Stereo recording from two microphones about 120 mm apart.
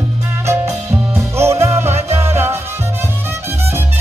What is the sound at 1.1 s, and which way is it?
Music, 20° right (ahead or behind).